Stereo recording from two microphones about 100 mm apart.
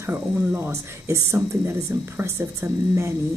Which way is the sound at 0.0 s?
25° right (ahead or behind).